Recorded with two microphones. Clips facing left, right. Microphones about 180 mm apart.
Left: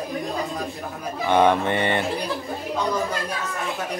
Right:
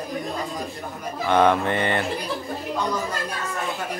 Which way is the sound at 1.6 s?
20° left (ahead or behind).